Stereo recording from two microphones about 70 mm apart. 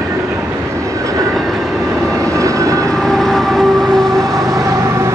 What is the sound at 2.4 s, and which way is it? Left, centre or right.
Vehicle, right.